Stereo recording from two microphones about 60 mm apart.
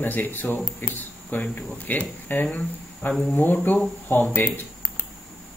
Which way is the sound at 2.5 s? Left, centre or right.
Centre.